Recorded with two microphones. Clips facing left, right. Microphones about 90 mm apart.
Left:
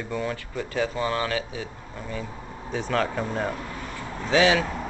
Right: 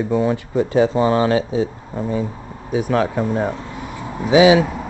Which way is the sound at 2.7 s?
10° right (ahead or behind).